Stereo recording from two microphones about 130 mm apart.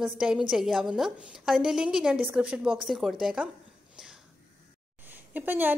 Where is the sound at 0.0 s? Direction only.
5° right (ahead or behind).